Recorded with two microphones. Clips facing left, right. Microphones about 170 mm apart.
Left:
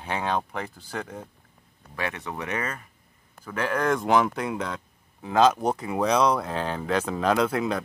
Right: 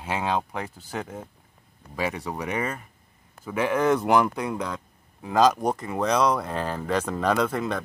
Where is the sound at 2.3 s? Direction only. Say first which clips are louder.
Right 2 dB; 15° right (ahead or behind).